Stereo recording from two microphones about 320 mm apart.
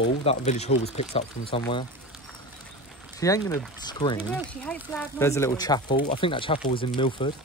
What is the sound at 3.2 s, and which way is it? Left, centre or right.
Speech, centre.